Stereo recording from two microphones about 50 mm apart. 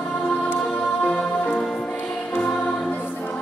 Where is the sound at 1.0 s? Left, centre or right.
Left.